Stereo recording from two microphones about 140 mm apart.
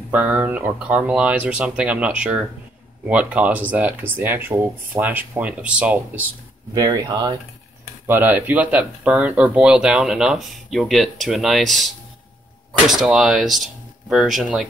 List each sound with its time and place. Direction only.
0.1 s speech: 10° right (ahead or behind)
6.7 s speech: 25° right (ahead or behind)
8.1 s speech: 15° right (ahead or behind)